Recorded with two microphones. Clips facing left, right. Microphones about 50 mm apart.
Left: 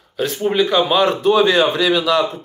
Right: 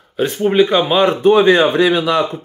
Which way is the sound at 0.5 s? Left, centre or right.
Right.